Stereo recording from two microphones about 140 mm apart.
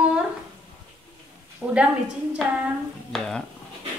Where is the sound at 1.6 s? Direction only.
10° right (ahead or behind).